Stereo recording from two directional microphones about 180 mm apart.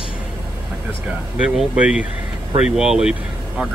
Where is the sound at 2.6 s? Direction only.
5° right (ahead or behind).